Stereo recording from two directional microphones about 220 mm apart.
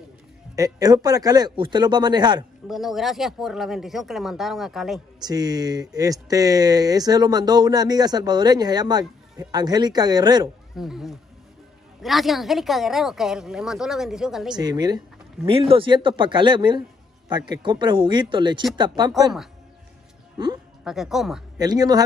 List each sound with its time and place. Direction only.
0.6 s speech: 15° right (ahead or behind)
2.7 s speech: centre (ahead or behind)
5.2 s speech: 15° right (ahead or behind)
10.8 s speech: centre (ahead or behind)
14.5 s speech: 20° right (ahead or behind)
20.8 s speech: centre (ahead or behind)
21.5 s speech: 20° right (ahead or behind)